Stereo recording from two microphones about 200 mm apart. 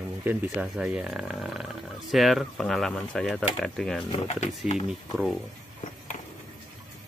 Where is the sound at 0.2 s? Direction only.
10° right (ahead or behind).